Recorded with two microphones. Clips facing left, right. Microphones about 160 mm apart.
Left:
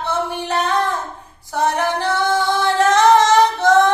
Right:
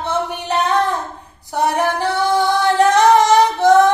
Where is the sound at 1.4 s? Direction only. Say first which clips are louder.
Right 1 dB; 15° right (ahead or behind).